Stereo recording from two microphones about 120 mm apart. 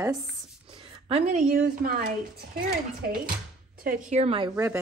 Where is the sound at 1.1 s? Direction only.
60° right (ahead or behind).